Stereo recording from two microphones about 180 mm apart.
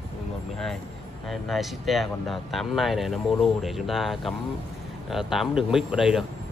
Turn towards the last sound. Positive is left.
turn(degrees=-5)  # may be behind; listen again after turning